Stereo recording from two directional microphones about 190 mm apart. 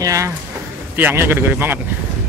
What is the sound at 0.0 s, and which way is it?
Speech, 15° right (ahead or behind).